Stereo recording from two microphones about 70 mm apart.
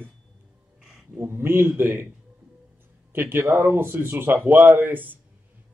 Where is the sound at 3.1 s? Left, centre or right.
Right.